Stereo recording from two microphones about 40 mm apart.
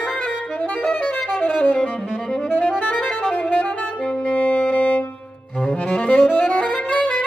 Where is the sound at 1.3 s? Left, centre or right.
Left.